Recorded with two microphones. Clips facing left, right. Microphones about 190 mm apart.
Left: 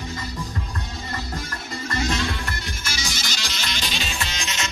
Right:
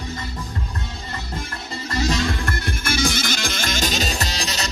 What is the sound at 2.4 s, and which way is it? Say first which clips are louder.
Music: right 6 dB; 55° right (ahead or behind).